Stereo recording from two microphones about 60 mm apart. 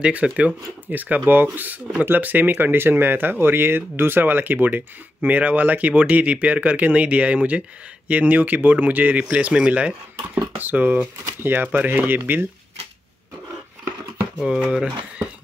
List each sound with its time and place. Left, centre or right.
0.0 s speech: right
14.4 s speech: centre